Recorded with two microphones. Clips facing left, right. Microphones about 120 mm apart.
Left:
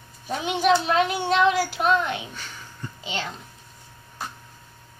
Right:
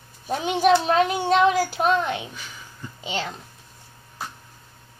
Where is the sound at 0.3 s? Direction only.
40° right (ahead or behind).